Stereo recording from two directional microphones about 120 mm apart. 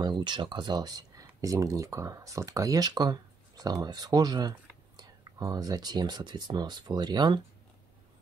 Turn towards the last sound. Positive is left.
turn(degrees=-35)  # may be behind; listen again after turning